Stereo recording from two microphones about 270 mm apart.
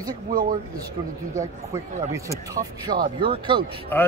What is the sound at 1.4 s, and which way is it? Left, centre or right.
Speech, centre.